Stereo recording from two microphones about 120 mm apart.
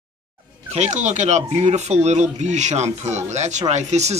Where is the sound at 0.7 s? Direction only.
80° right.